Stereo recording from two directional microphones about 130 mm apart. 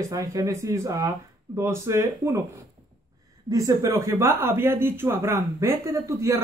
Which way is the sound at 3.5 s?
25° right (ahead or behind).